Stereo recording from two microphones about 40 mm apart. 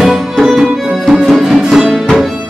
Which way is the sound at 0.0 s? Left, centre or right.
Centre.